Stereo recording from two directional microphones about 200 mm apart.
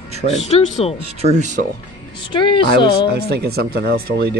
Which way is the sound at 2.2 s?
25° left (ahead or behind).